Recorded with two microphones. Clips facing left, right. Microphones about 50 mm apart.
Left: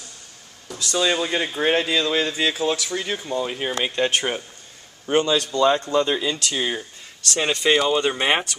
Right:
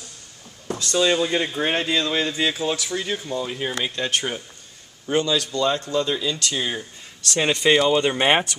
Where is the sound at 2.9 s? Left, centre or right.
Centre.